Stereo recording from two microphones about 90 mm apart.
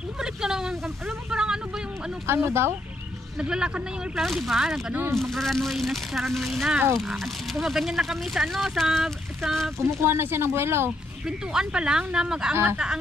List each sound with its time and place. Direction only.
0.2 s a sound: 5° right (ahead or behind)
2.2 s speech: 30° right (ahead or behind)
3.3 s speech: 10° right (ahead or behind)
9.8 s speech: 30° right (ahead or behind)
11.2 s speech: 10° right (ahead or behind)